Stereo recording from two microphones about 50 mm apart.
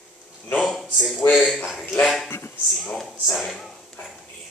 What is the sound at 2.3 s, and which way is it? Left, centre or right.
Speech, left.